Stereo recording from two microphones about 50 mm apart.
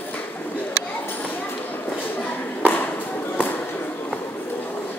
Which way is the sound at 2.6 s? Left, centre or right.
Left.